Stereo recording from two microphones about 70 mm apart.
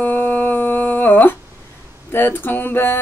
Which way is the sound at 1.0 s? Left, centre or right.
Left.